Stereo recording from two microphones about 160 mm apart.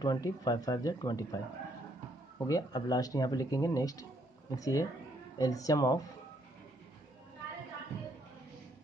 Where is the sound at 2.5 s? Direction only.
25° left (ahead or behind).